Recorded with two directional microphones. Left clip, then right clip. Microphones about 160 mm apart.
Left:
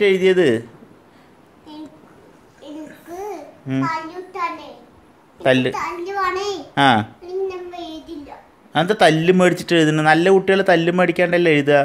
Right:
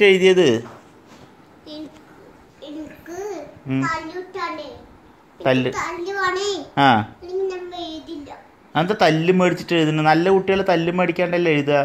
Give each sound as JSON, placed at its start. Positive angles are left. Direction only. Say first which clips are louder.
{"t": 0.0, "sound": "speech", "louder": "right 1 dB", "side_deg": -5}
{"t": 2.9, "sound": "babbling", "louder": "left 1 dB", "side_deg": 25}
{"t": 5.4, "sound": "a child's voice", "louder": "left 2 dB", "side_deg": 25}
{"t": 6.7, "sound": "a child's voice", "louder": "left 1 dB", "side_deg": 25}
{"t": 7.4, "sound": "child singing", "louder": "right 1 dB", "side_deg": 15}
{"t": 8.7, "sound": "speech", "louder": "left 3 dB", "side_deg": 25}